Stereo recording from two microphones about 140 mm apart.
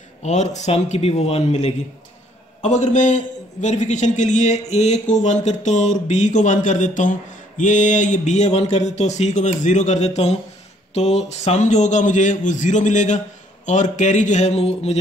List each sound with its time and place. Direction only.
0.2 s a man's voice: 55° left (ahead or behind)